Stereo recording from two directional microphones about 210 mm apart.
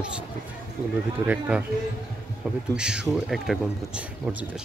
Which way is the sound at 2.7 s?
5° right (ahead or behind).